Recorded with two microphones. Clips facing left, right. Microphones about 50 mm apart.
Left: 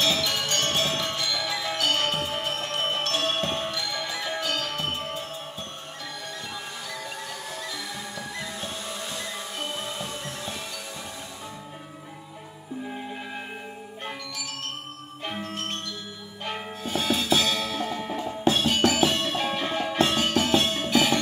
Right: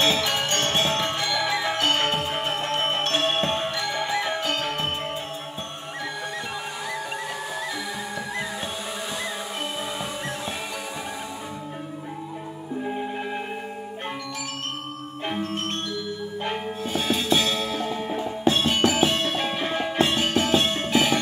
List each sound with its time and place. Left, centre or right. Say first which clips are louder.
0.0 s music: right 3 dB; right
9.9 s music: right 4 dB; centre
15.2 s music: right 4 dB; right
17.6 s music: right 2 dB; centre
18.5 s music: right 1 dB; right